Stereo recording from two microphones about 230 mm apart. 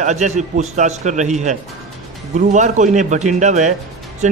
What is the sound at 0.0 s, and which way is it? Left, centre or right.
A man's voice, right.